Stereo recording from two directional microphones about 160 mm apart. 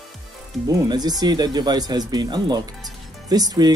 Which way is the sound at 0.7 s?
25° right (ahead or behind).